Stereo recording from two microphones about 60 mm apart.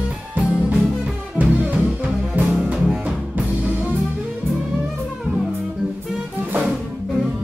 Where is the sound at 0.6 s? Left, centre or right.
Right.